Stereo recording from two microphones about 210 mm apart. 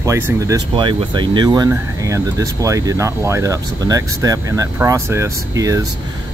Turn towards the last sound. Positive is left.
turn(degrees=-15)  # may be behind; listen again after turning